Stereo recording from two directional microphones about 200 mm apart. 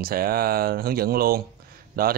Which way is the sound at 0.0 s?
50° right (ahead or behind).